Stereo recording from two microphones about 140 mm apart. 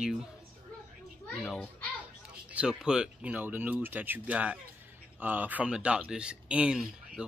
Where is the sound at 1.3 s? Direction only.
Centre (ahead or behind).